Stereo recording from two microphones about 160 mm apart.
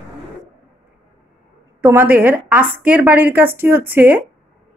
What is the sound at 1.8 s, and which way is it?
A woman's voice, 10° right (ahead or behind).